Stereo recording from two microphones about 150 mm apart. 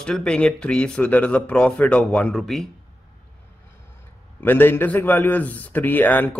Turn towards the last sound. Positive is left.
turn(degrees=10)  # may be behind; listen again after turning